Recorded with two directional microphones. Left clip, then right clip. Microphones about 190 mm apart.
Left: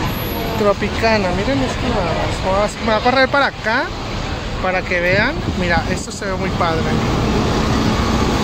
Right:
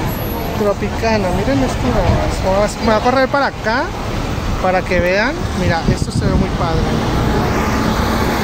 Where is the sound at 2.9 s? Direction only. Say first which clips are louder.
Even; 10° right (ahead or behind).